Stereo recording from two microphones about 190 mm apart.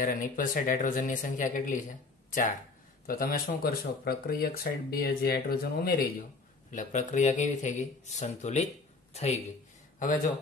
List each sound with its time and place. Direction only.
0.0 s speech: 45° left (ahead or behind)
3.1 s speech: 50° left (ahead or behind)
6.7 s a man's voice: 40° left (ahead or behind)